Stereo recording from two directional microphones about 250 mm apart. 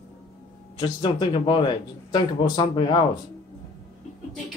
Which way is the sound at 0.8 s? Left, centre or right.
Centre.